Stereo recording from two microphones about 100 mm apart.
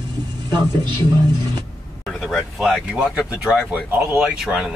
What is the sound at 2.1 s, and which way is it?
Speech, centre (ahead or behind).